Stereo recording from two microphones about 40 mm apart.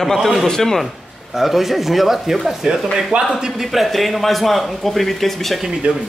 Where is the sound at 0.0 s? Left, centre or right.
Centre.